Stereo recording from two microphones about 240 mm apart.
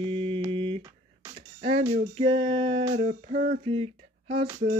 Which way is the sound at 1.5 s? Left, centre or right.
Right.